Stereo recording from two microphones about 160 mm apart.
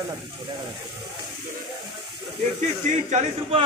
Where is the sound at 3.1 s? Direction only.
45° right (ahead or behind).